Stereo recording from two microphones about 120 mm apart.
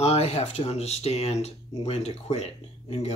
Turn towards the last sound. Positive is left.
turn(degrees=65)  # may be behind; listen again after turning